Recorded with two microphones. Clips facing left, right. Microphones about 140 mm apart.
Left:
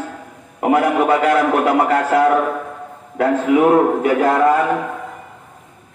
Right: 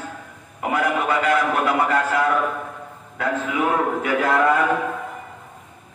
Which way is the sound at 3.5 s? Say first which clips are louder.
Left 10 dB; 40° left (ahead or behind).